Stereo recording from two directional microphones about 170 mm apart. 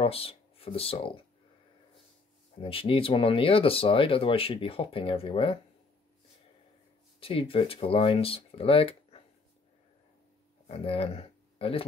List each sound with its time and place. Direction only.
0.0 s speech: 35° left (ahead or behind)
2.6 s speech: 30° left (ahead or behind)
7.2 s speech: 35° left (ahead or behind)
10.7 s speech: 35° left (ahead or behind)